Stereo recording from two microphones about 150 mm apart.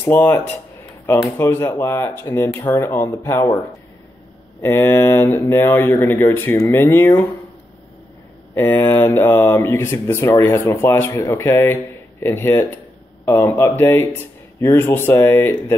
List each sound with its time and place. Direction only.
0.0 s speech: 15° left (ahead or behind)
4.6 s speech: 15° left (ahead or behind)
8.5 s speech: 15° left (ahead or behind)